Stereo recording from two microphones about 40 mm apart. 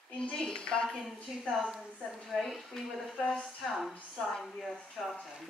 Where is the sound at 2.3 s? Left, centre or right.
Centre.